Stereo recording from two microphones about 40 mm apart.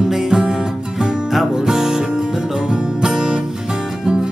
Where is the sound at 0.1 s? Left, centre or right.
Centre.